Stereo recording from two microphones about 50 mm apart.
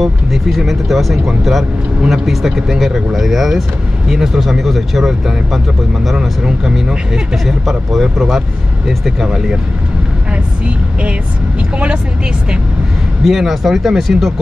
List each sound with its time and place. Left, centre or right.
0.0 s speech: centre
2.0 s speech: centre
6.1 s speech: centre
7.4 s speech: centre
13.2 s speech: centre